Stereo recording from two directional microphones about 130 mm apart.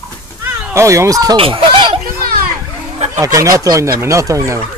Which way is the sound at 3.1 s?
25° right (ahead or behind).